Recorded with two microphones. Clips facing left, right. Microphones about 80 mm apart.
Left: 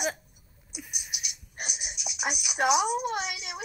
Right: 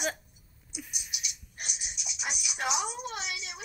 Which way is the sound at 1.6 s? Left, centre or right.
Left.